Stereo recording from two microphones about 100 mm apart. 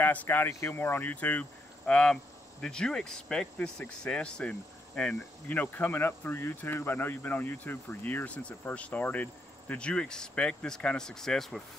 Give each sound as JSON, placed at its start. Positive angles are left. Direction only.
{"t": 0.0, "sound": "speech", "side_deg": 20}